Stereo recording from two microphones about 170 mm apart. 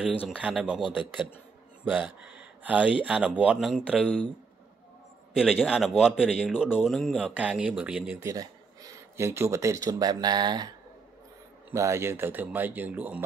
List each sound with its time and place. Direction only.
0.3 s speech: 5° right (ahead or behind)
1.9 s a man's voice: 10° right (ahead or behind)
5.3 s a man's voice: 5° right (ahead or behind)
8.2 s speech: 20° right (ahead or behind)
11.7 s speech: 15° right (ahead or behind)